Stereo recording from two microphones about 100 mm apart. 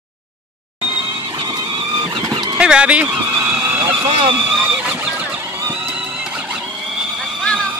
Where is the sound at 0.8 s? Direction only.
55° right (ahead or behind).